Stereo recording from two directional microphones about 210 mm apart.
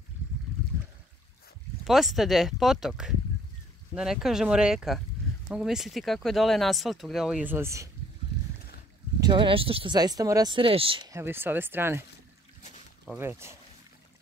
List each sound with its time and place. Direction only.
1.9 s speech: centre (ahead or behind)
9.2 s speech: 25° right (ahead or behind)
13.2 s speech: 10° right (ahead or behind)